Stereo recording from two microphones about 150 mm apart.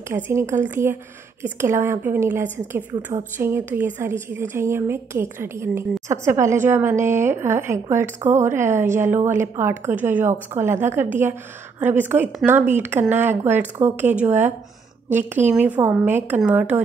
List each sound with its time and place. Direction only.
0.1 s a woman's voice: 15° right (ahead or behind)